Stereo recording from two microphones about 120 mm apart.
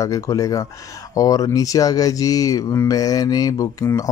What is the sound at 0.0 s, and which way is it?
Speech, 30° left (ahead or behind).